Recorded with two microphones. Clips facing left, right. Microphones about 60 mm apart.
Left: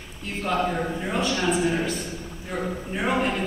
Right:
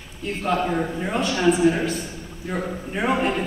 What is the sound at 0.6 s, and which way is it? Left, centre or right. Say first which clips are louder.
Speech: right 2 dB; centre.